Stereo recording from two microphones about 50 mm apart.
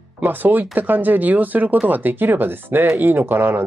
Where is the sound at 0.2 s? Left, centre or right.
Right.